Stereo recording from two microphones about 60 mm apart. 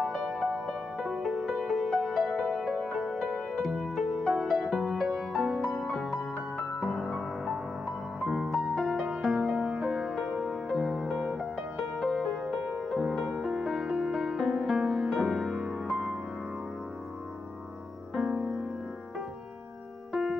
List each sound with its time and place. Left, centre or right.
0.0 s music: centre
18.1 s music: centre
20.1 s keyboard: centre